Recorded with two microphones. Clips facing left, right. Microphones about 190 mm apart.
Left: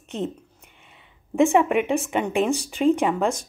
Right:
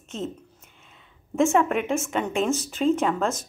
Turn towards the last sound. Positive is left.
turn(degrees=15)  # may be behind; listen again after turning